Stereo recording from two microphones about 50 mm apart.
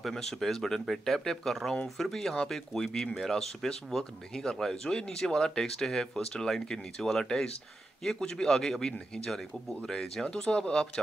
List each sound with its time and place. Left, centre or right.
0.0 s speech: centre